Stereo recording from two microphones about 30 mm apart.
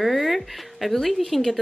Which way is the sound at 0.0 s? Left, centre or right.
Centre.